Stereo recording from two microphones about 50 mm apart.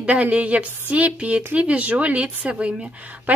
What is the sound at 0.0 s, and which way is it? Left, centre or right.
A woman's voice, right.